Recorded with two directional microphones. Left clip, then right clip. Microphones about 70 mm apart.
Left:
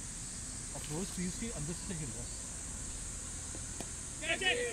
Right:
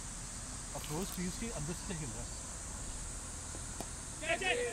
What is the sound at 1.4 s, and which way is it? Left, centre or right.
Speech, right.